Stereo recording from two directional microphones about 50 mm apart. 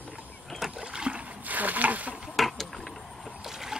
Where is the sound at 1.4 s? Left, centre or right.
Right.